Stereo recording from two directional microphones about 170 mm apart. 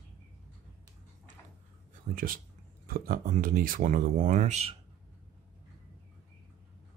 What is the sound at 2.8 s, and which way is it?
Speech, 55° right (ahead or behind).